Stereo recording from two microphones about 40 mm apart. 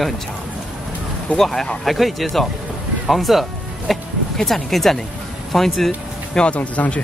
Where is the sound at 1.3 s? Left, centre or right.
Centre.